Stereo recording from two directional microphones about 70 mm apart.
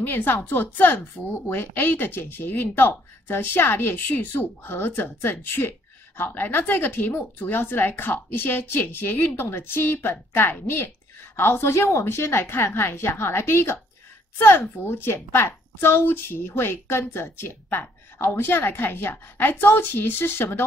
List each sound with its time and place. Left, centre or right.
0.0 s a woman's voice: left